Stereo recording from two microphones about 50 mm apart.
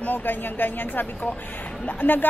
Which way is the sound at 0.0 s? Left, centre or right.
Left.